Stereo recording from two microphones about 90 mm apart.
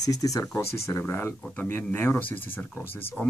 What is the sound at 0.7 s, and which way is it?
Speech, 30° left (ahead or behind).